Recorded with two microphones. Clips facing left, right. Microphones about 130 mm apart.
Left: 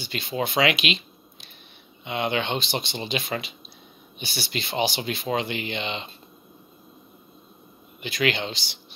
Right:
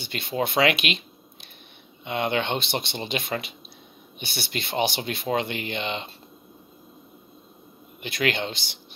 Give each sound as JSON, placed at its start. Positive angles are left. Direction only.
{"t": 0.0, "sound": "speech", "side_deg": -55}
{"t": 8.0, "sound": "speech", "side_deg": -55}